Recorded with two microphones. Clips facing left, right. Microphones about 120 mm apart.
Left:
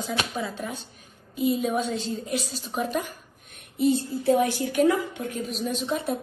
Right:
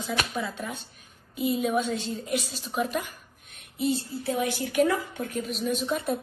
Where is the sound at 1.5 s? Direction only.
40° left (ahead or behind).